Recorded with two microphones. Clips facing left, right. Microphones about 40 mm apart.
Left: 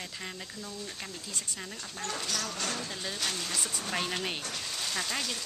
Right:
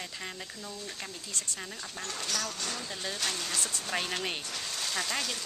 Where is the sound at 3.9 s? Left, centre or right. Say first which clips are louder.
Even; centre.